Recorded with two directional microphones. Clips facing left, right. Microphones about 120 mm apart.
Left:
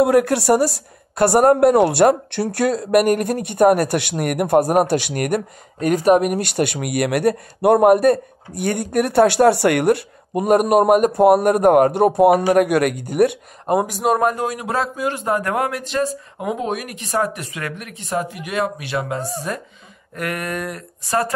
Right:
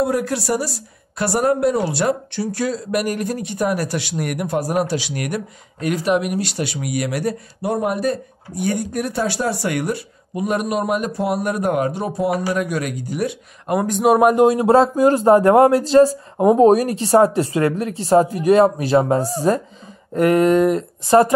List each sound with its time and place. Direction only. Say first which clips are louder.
0.0 s speech: left 5 dB; 65° left (ahead or behind)
13.8 s speech: right 4 dB; 5° left (ahead or behind)
14.1 s speech: right 5 dB; 15° right (ahead or behind)
14.4 s speech: right 10 dB; 30° right (ahead or behind)